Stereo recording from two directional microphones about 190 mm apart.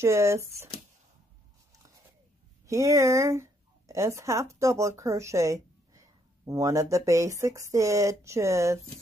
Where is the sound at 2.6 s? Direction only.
15° right (ahead or behind).